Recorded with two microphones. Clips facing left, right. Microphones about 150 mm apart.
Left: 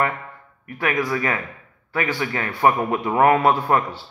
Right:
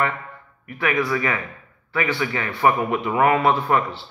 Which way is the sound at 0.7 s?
40° left (ahead or behind).